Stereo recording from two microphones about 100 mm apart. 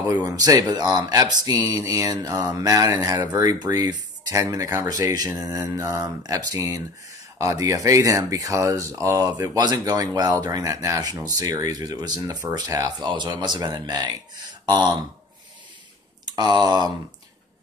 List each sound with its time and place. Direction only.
0.1 s speech: 40° right (ahead or behind)
9.6 s speech: 40° right (ahead or behind)
16.3 s speech: 45° right (ahead or behind)